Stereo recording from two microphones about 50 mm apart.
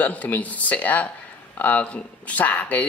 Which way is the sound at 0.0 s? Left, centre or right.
Left.